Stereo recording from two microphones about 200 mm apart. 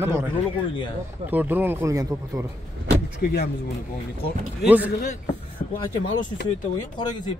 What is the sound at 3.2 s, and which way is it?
Speech, 50° left (ahead or behind).